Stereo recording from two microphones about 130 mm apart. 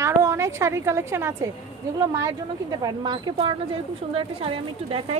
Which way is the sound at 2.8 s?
35° right (ahead or behind).